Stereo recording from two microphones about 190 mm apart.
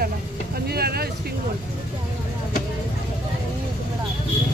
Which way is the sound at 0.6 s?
55° right (ahead or behind).